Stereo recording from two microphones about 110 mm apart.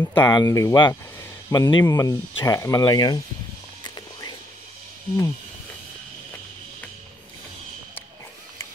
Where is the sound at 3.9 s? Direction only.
40° left (ahead or behind).